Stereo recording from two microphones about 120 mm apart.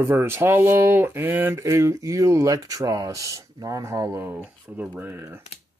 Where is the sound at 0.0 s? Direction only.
20° right (ahead or behind).